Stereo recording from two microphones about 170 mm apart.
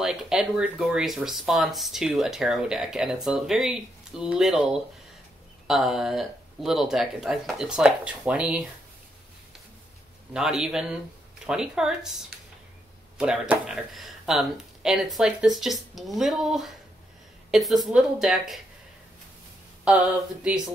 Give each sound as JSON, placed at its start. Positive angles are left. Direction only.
{"t": 0.0, "sound": "speech", "side_deg": -5}
{"t": 10.3, "sound": "speech", "side_deg": -5}
{"t": 13.2, "sound": "speech", "side_deg": -5}
{"t": 19.8, "sound": "speech", "side_deg": -5}